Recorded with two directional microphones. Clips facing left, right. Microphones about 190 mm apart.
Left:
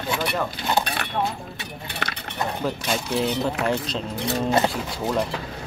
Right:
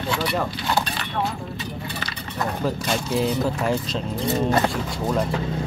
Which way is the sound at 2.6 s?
Centre (ahead or behind).